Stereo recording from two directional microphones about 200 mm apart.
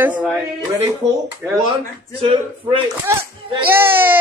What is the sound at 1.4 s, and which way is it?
Speech, 10° right (ahead or behind).